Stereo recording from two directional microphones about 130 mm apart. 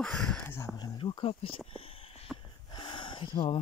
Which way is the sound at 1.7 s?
45° left (ahead or behind).